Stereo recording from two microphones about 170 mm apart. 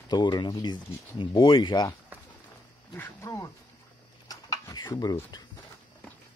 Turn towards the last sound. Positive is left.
turn(degrees=25)  # may be behind; listen again after turning